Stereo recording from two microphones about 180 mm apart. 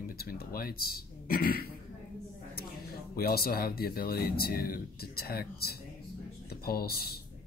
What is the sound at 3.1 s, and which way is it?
Speech, 55° left (ahead or behind).